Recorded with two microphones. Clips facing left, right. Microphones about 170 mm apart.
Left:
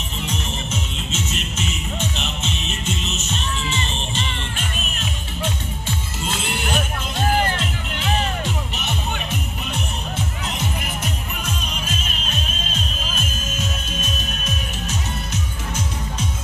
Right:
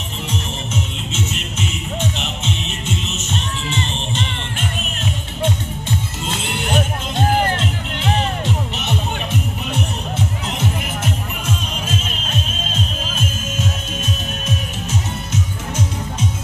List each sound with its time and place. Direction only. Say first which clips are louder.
6.6 s music: right 7 dB; 25° right (ahead or behind)